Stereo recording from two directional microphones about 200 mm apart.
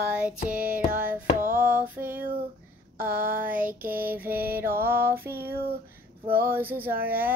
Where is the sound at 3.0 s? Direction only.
45° right (ahead or behind).